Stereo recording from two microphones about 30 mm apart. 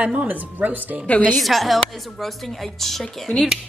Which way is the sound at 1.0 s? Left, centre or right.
Left.